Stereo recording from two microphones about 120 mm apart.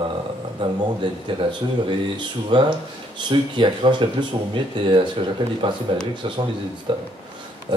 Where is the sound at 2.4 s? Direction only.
45° right (ahead or behind).